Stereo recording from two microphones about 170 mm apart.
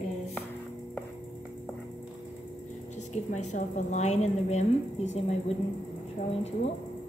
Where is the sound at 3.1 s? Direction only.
45° left (ahead or behind).